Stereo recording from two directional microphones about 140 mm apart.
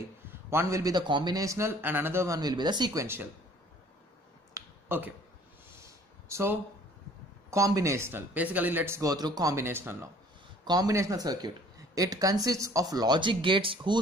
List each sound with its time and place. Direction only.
0.3 s speech: 15° right (ahead or behind)
4.6 s finger snapping: 15° right (ahead or behind)
5.8 s a sound: 20° right (ahead or behind)
7.5 s speech: 20° right (ahead or behind)
10.6 s speech: 30° right (ahead or behind)